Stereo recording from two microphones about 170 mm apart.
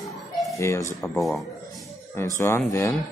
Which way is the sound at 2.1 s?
15° left (ahead or behind).